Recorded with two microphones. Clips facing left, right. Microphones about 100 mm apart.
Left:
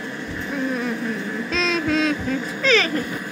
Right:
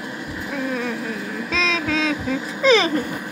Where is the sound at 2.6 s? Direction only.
20° right (ahead or behind).